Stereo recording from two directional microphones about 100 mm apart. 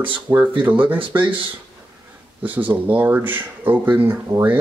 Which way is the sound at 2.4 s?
15° right (ahead or behind).